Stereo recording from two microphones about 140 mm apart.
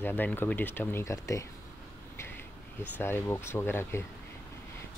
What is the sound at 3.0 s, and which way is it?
Speech, 15° left (ahead or behind).